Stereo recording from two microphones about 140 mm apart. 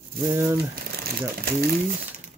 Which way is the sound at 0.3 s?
20° right (ahead or behind).